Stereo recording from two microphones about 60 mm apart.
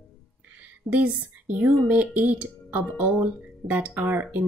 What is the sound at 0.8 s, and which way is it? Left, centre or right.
Speech, right.